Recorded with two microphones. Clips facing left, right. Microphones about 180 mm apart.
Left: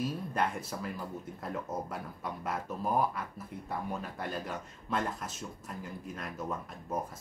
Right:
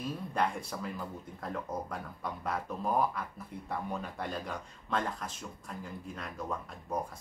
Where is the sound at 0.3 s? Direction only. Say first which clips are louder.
Even; 5° left (ahead or behind).